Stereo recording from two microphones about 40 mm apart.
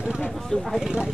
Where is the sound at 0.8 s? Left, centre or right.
Centre.